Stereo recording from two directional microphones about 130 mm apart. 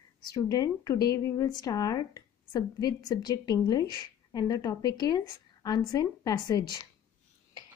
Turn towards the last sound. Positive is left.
turn(degrees=30)  # may be behind; listen again after turning